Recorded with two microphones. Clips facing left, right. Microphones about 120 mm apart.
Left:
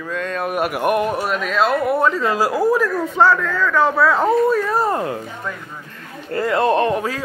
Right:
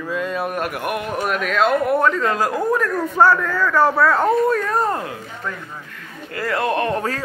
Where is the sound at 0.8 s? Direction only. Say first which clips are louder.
Left 7 dB; 35° left (ahead or behind).